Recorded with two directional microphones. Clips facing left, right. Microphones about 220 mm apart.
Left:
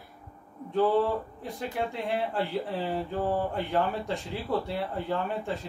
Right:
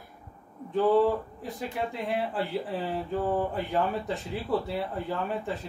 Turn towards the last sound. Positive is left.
turn(degrees=0)  # may be behind; listen again after turning